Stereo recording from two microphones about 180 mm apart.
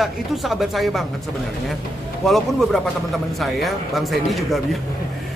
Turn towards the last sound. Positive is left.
turn(degrees=0)  # may be behind; listen again after turning